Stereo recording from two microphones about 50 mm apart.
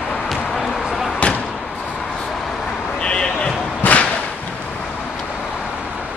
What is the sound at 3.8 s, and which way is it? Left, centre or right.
Whip, left.